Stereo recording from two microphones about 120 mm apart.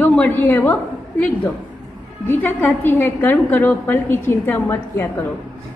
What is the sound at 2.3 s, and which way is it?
A woman's voice, 15° left (ahead or behind).